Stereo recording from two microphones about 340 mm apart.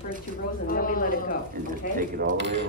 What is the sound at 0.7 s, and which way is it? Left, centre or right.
Speech, left.